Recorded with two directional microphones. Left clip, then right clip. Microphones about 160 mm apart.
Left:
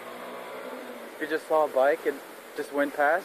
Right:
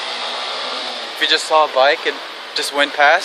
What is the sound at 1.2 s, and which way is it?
Speech, 45° right (ahead or behind).